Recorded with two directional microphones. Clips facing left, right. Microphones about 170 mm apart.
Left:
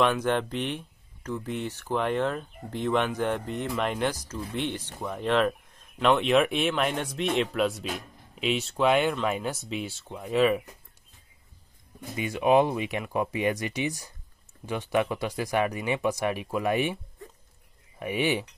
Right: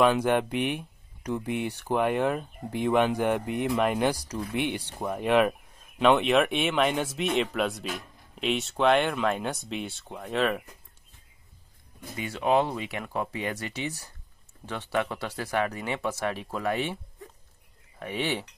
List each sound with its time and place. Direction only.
0.0 s speech: 10° right (ahead or behind)
12.2 s speech: 15° left (ahead or behind)